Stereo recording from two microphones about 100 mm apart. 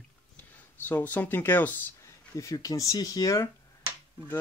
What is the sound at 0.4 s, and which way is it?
Speech, 20° left (ahead or behind).